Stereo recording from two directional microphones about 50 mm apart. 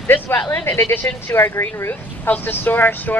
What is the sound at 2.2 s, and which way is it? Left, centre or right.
Speech, left.